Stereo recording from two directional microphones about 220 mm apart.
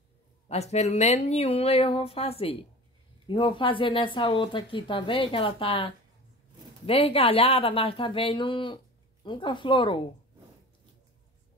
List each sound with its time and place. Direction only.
0.5 s speech: 30° left (ahead or behind)
6.9 s speech: 25° left (ahead or behind)